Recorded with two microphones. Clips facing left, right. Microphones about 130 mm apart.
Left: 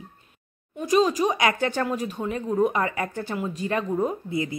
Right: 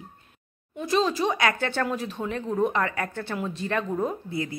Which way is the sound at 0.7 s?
10° left (ahead or behind).